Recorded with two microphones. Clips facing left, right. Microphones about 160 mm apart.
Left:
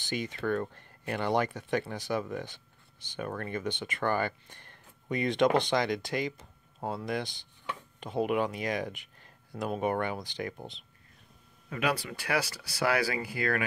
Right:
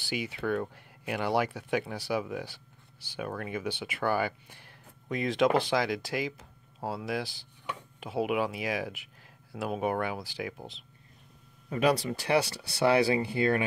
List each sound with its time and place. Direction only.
0.0 s speech: 10° right (ahead or behind)
11.7 s speech: 35° right (ahead or behind)